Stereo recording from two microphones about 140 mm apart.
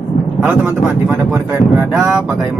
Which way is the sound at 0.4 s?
15° right (ahead or behind).